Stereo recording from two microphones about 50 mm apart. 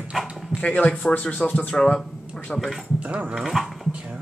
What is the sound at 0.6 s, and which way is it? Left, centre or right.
Speech, left.